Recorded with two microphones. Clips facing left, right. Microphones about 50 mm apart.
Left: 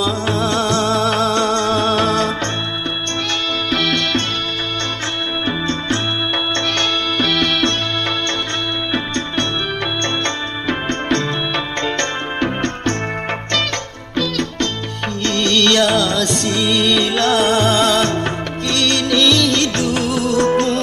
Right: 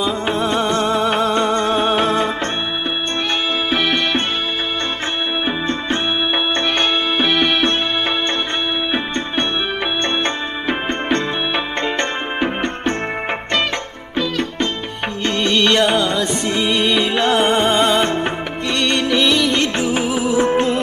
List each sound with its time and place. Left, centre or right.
0.0 s music: centre
3.7 s music: centre
5.4 s music: centre
8.9 s music: centre
14.1 s music: centre